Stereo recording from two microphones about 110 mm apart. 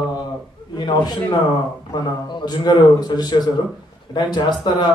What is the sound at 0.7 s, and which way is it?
Speech, 40° left (ahead or behind).